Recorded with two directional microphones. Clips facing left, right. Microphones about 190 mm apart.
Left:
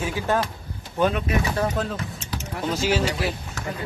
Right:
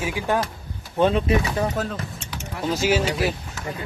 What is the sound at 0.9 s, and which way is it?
Speech, 25° right (ahead or behind).